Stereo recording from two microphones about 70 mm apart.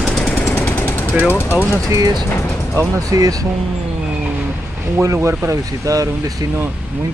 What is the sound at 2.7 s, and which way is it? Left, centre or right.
Speech, right.